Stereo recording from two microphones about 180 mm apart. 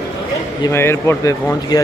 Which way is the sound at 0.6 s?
15° left (ahead or behind).